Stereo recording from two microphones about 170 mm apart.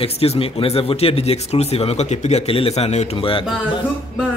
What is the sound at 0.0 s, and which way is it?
Speech, 35° left (ahead or behind).